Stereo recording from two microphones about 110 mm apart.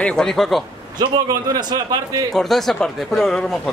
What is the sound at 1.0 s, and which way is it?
A man's voice, 35° right (ahead or behind).